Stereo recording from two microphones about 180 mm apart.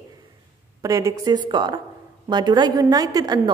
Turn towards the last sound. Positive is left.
turn(degrees=-20)  # may be behind; listen again after turning